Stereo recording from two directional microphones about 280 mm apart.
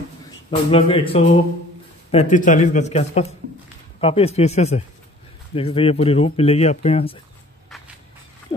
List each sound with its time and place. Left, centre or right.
0.7 s speech: centre